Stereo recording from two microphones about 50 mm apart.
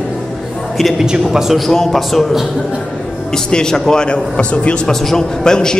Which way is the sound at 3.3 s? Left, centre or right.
Centre.